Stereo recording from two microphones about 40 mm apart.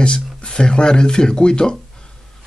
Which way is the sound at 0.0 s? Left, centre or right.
Left.